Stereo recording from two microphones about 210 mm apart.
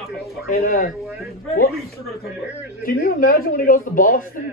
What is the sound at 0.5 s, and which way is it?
Speech, 45° left (ahead or behind).